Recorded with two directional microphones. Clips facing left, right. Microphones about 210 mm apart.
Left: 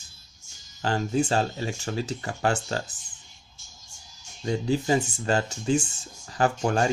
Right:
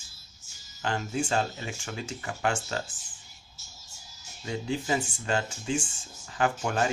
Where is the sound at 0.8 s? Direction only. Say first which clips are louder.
Left 5 dB; 40° left (ahead or behind).